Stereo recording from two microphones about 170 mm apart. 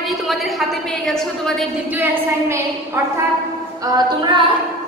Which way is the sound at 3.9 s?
20° right (ahead or behind).